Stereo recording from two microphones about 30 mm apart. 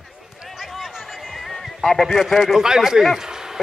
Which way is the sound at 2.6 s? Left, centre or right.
Right.